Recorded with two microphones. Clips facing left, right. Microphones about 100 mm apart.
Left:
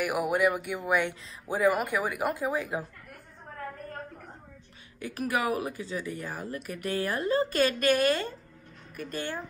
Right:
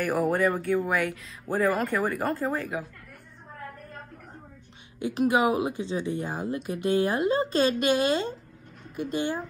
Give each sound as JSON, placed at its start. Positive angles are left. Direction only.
{"t": 0.0, "sound": "speech", "side_deg": 10}
{"t": 5.0, "sound": "speech", "side_deg": -20}